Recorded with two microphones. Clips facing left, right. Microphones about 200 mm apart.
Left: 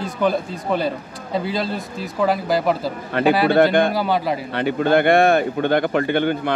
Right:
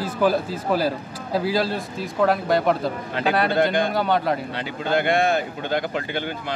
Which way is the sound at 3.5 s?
60° left (ahead or behind).